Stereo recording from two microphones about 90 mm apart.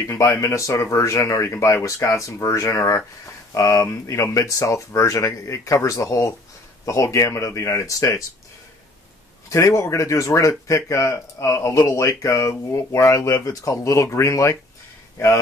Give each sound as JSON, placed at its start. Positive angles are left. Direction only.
{"t": 0.0, "sound": "speech", "side_deg": 30}
{"t": 9.5, "sound": "speech", "side_deg": 35}